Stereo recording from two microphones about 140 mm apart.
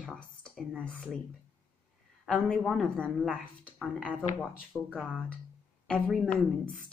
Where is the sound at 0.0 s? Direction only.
5° left (ahead or behind).